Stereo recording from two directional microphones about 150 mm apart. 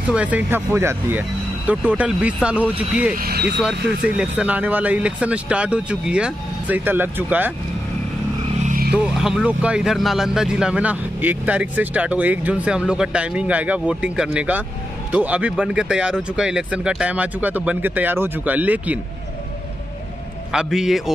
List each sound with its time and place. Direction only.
0.1 s speech: 10° right (ahead or behind)
3.2 s speech: 90° right
3.6 s speech: 5° right (ahead or behind)
8.6 s vehicle: 70° right (ahead or behind)
8.9 s speech: 5° right (ahead or behind)
20.5 s a man's voice: 5° right (ahead or behind)